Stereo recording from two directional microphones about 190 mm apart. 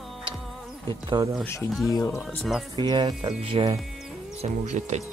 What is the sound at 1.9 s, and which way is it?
Speech, 15° left (ahead or behind).